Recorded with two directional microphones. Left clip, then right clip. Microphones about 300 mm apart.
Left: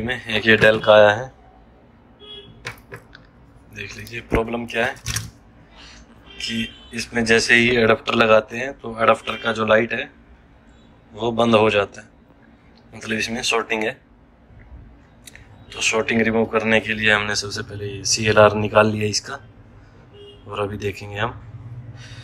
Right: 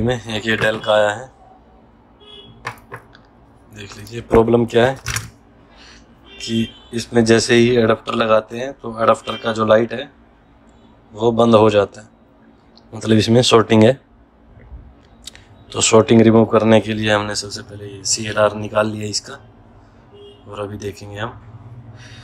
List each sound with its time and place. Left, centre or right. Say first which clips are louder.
0.0 s speech: even; centre
3.7 s speech: left 1 dB; centre
4.4 s speech: right 10 dB; right
6.3 s speech: right 3 dB; centre
11.1 s speech: right 4 dB; centre
15.2 s speech: right 5 dB; right
20.4 s speech: left 2 dB; centre